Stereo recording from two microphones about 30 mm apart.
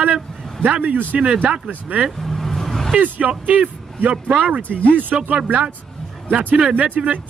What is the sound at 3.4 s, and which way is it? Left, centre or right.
Speech, right.